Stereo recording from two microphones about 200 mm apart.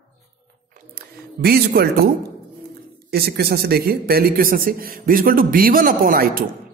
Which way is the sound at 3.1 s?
50° right (ahead or behind).